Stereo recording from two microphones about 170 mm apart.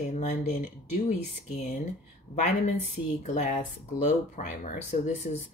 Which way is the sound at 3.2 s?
45° left (ahead or behind).